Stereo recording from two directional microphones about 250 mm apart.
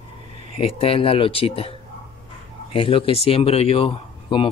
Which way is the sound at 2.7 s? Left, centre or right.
Left.